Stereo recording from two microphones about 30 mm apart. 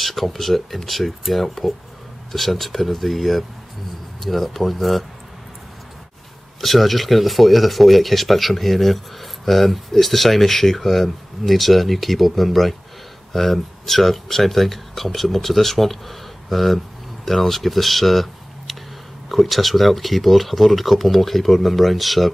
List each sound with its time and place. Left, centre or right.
0.0 s speech: centre
6.6 s speech: centre